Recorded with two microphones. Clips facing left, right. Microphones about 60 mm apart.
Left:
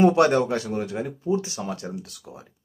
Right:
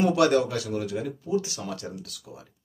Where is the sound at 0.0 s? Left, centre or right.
Left.